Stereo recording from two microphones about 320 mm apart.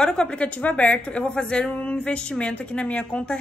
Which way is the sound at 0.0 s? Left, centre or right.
Centre.